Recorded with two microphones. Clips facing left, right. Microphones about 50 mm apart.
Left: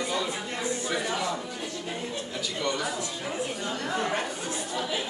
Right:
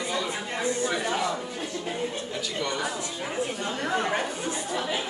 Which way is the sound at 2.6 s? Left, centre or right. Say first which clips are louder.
Left 1 dB; centre.